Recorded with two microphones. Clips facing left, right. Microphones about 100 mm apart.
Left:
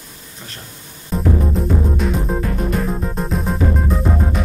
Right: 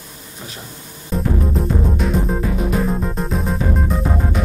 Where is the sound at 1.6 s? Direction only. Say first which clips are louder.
Left 1 dB; centre (ahead or behind).